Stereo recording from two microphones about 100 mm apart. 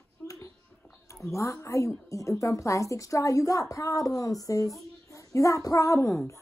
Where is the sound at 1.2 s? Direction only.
30° left (ahead or behind).